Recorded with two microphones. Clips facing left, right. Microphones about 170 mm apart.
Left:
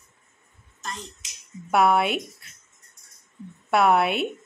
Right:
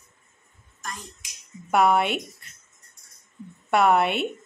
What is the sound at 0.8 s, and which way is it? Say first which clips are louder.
Finger snapping: left 1 dB; 25° left (ahead or behind).